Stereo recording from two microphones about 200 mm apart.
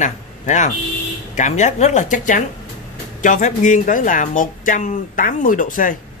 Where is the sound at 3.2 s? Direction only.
40° left (ahead or behind).